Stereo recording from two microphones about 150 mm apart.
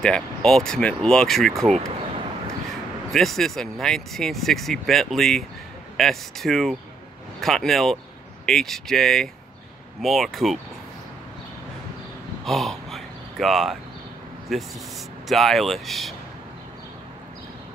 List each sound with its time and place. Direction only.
0.0 s speech: 5° left (ahead or behind)
3.1 s speech: centre (ahead or behind)
12.4 s a sound: centre (ahead or behind)
14.5 s speech: centre (ahead or behind)